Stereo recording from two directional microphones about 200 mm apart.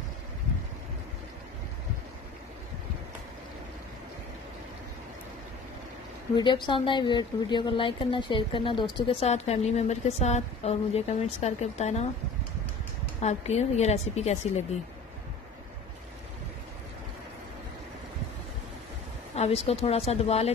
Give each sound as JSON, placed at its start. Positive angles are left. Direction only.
{"t": 6.3, "sound": "speech", "side_deg": 20}
{"t": 13.2, "sound": "speech", "side_deg": 35}
{"t": 19.3, "sound": "speech", "side_deg": 30}